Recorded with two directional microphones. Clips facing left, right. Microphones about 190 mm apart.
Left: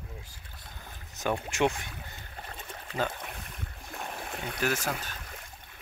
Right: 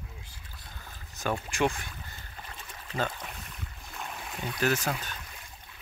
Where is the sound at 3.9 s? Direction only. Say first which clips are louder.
Left 1 dB; 45° left (ahead or behind).